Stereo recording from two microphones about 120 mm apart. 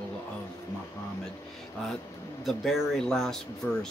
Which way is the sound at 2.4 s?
Centre (ahead or behind).